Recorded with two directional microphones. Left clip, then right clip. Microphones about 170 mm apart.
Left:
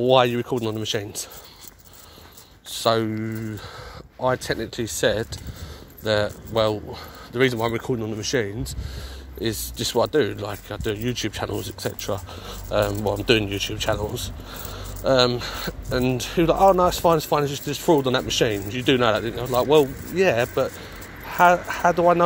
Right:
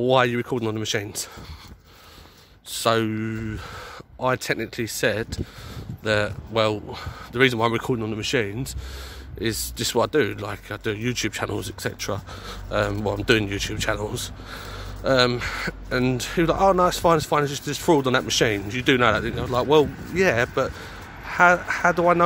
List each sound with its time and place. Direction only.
0.0 s speech: 10° right (ahead or behind)
2.7 s speech: 20° right (ahead or behind)